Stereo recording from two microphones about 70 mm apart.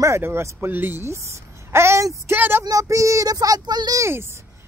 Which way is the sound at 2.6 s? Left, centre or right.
Right.